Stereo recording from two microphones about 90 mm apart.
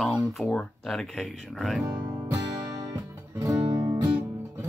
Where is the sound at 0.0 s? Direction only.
Centre (ahead or behind).